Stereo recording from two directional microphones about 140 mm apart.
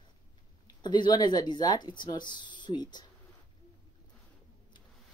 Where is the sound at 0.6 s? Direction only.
30° left (ahead or behind).